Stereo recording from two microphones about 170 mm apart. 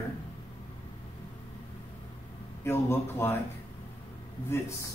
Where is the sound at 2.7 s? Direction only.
15° left (ahead or behind).